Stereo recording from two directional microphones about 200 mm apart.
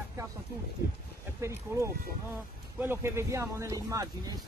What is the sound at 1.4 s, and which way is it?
Speech, 15° right (ahead or behind).